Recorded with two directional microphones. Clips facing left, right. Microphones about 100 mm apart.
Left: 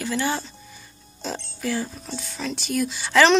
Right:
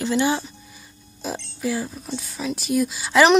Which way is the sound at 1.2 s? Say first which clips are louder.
Right 2 dB; 5° right (ahead or behind).